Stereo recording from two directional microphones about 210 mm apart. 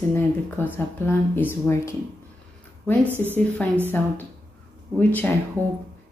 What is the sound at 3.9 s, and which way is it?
Speech, 10° left (ahead or behind).